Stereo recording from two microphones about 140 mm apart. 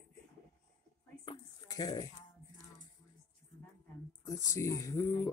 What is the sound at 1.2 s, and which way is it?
Speech, 30° left (ahead or behind).